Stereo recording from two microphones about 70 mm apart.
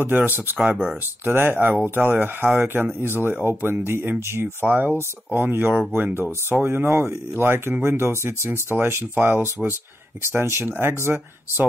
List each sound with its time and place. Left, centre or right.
0.0 s speech: right